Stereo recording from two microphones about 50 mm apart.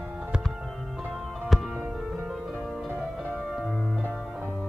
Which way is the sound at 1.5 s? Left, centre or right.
Centre.